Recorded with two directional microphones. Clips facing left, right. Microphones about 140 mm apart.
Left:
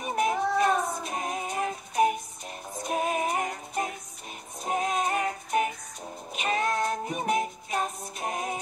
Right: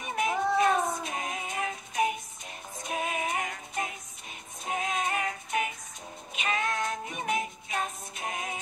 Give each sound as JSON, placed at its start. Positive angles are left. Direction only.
{"t": 0.0, "sound": "music", "side_deg": 40}